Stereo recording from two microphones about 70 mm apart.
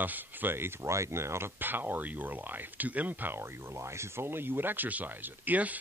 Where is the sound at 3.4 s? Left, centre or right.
Right.